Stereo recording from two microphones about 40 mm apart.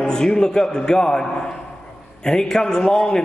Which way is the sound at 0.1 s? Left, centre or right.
Centre.